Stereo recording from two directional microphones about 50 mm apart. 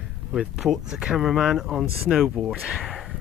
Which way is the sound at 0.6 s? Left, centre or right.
Centre.